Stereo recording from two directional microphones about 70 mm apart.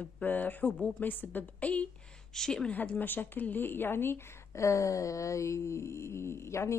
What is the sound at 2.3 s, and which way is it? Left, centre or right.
Speech, centre.